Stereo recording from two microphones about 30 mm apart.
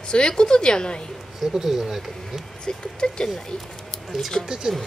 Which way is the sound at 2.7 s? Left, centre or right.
Left.